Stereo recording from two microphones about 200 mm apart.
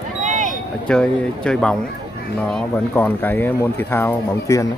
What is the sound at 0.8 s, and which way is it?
Speech, 5° left (ahead or behind).